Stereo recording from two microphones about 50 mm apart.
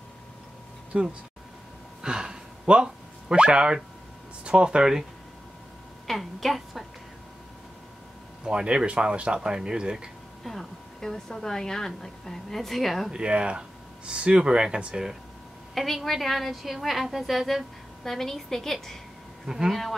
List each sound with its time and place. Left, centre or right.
0.9 s speech: right
2.0 s a sound: centre
4.5 s speech: centre
6.0 s a woman's voice: centre
8.5 s speech: centre
10.4 s a woman's voice: centre
13.1 s speech: centre
15.7 s a woman's voice: centre
19.4 s speech: centre
19.7 s a woman's voice: centre